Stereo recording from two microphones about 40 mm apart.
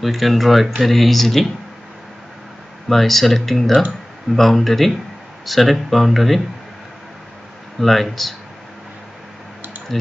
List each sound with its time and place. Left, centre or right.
0.0 s speech: centre
2.9 s speech: centre
7.8 s speech: centre